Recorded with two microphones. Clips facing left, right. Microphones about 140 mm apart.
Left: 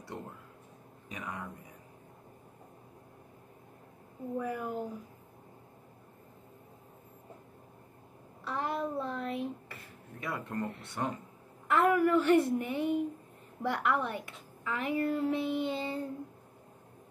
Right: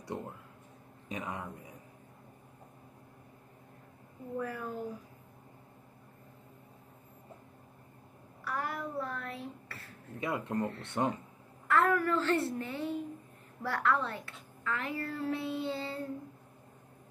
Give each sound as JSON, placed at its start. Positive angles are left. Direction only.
{"t": 1.0, "sound": "speech", "side_deg": -25}
{"t": 4.4, "sound": "a woman's voice", "side_deg": 15}
{"t": 8.5, "sound": "a child's voice", "side_deg": 25}
{"t": 10.2, "sound": "speech", "side_deg": -20}
{"t": 11.6, "sound": "a woman's voice", "side_deg": 15}